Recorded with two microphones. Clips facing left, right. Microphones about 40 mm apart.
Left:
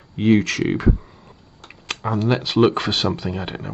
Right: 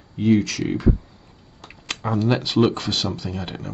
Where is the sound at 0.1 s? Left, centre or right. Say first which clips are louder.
Left 2 dB; left.